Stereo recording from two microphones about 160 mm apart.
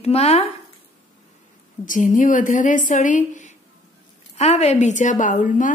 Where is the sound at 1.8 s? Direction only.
55° left (ahead or behind).